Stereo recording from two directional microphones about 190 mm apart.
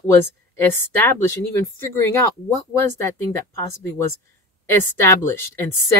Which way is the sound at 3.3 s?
15° left (ahead or behind).